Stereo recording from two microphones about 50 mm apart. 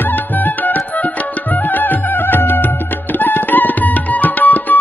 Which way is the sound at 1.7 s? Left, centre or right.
Left.